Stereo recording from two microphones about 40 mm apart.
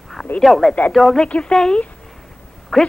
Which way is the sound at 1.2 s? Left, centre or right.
Left.